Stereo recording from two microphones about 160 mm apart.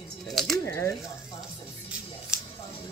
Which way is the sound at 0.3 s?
Centre (ahead or behind).